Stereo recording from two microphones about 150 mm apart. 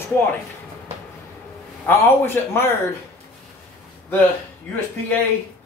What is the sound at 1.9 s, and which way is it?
Speech, 15° left (ahead or behind).